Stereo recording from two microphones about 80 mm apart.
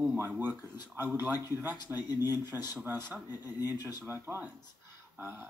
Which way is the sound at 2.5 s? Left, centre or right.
Right.